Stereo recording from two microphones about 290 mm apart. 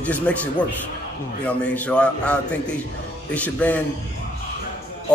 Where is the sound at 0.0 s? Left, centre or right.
Centre.